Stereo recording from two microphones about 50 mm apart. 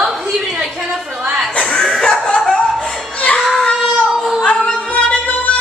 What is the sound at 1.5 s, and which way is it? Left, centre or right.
Music, centre.